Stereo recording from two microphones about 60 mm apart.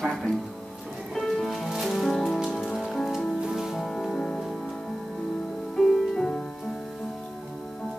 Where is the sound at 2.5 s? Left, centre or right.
Centre.